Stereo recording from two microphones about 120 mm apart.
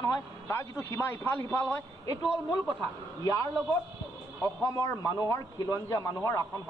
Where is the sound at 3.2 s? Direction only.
30° left (ahead or behind).